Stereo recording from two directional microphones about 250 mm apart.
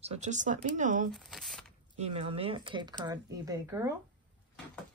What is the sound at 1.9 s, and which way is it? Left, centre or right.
Speech, right.